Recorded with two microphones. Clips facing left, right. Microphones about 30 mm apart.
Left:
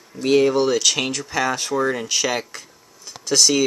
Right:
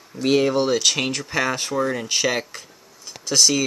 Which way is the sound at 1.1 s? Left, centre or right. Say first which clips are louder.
Left 1 dB; centre.